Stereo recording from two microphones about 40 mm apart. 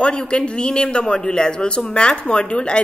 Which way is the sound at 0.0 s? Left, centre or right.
Left.